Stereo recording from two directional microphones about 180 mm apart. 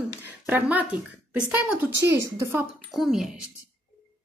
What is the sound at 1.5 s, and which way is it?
A woman's voice, 10° right (ahead or behind).